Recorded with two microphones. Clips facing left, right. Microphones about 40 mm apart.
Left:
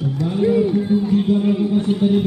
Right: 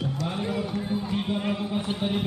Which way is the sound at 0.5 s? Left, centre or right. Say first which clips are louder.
Left 12 dB; centre.